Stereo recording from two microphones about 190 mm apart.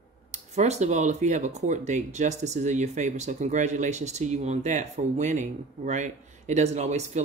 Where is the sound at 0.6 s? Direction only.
40° right (ahead or behind).